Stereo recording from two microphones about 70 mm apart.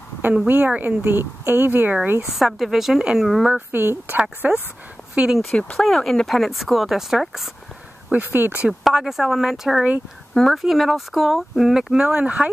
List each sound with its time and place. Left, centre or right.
0.5 s speech: right
2.2 s speech: centre
3.7 s speech: right
4.4 s speech: right
5.8 s speech: centre
8.1 s speech: right
8.8 s speech: centre